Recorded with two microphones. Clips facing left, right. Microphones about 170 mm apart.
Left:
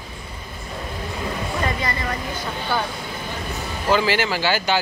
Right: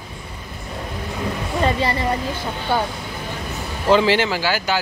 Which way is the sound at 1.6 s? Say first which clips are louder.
Right 8 dB; 30° right (ahead or behind).